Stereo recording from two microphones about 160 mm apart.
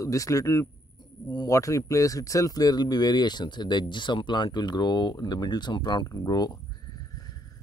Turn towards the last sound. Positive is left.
turn(degrees=25)  # may be behind; listen again after turning